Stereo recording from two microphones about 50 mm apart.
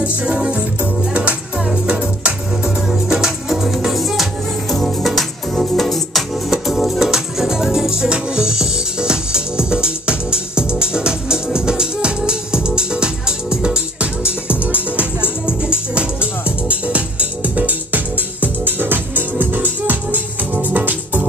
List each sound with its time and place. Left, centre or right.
0.2 s music: right
2.6 s music: centre; by 21.3 s right